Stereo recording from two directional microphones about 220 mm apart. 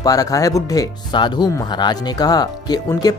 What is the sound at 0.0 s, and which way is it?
Speech, 15° left (ahead or behind).